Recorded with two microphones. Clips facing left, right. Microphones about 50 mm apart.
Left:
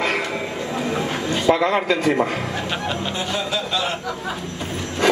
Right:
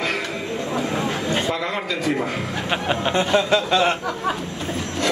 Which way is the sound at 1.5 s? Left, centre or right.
Left.